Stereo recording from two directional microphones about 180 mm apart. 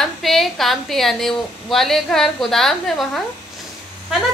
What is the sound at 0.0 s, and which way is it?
A woman's voice, centre (ahead or behind).